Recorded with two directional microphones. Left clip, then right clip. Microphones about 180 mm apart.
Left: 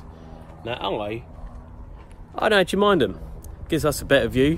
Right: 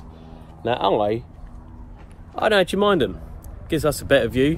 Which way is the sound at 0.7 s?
Centre (ahead or behind).